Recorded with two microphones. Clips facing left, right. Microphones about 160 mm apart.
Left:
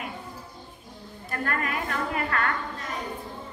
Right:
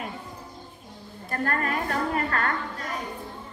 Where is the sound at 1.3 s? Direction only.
35° right (ahead or behind).